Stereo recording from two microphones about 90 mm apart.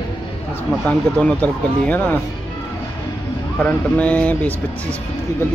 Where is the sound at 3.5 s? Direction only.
15° left (ahead or behind).